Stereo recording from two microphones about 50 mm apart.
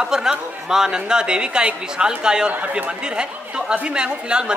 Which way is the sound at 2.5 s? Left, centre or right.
Right.